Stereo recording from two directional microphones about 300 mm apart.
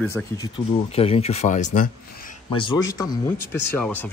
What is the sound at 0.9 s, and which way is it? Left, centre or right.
Speech, centre.